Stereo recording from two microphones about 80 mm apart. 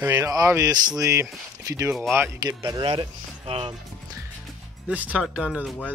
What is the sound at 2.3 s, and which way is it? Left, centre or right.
Speech, right.